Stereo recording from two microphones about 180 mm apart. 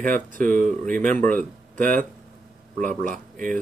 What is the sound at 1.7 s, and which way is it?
Speech, 50° right (ahead or behind).